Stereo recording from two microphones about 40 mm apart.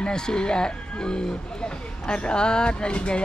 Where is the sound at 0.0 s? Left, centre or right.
Centre.